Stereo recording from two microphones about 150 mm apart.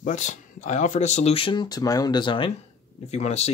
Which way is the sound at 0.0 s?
55° left (ahead or behind).